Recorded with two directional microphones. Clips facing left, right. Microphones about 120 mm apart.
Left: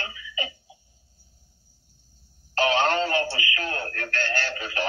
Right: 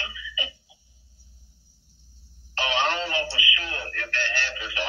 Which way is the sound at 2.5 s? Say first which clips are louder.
Left 4 dB; 45° left (ahead or behind).